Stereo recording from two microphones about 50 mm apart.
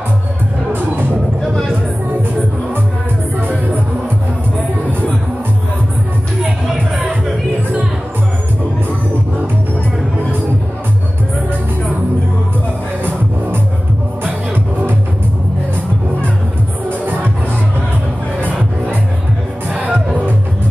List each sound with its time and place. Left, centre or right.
3.3 s music: right
17.0 s music: right
19.7 s music: right